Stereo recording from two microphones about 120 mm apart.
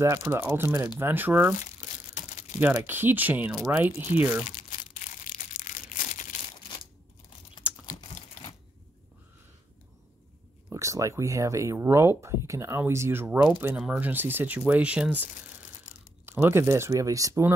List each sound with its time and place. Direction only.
0.0 s speech: 25° right (ahead or behind)
2.7 s speech: 20° right (ahead or behind)
4.9 s crumpling: 90° left
7.8 s typing: 90° left
10.7 s speech: 25° right (ahead or behind); by 15.2 s 10° right (ahead or behind)
16.3 s speech: 20° right (ahead or behind)